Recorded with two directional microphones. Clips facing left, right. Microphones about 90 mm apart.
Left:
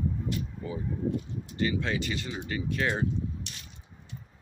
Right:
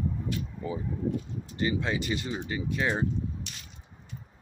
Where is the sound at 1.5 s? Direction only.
20° right (ahead or behind).